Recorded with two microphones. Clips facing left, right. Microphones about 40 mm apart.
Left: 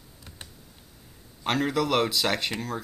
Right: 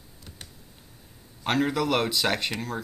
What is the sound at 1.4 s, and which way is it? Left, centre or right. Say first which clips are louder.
Speech: right 1 dB; centre.